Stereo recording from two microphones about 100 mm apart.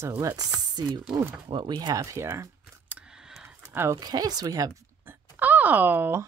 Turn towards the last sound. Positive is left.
turn(degrees=-20)  # may be behind; listen again after turning